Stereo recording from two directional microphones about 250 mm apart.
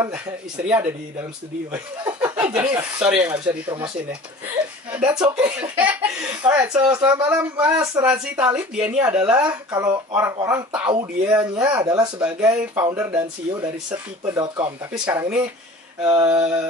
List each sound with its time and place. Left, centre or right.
0.7 s speech: centre
4.9 s speech: centre